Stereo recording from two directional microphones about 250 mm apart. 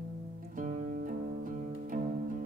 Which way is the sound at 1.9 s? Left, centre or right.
Right.